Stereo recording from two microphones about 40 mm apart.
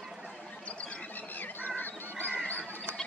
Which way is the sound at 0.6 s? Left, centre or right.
Left.